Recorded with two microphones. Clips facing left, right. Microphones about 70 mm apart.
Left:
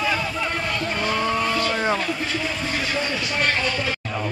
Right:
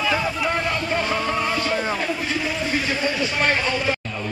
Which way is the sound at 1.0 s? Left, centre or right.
Centre.